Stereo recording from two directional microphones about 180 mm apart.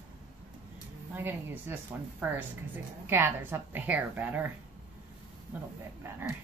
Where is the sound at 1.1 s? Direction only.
10° right (ahead or behind).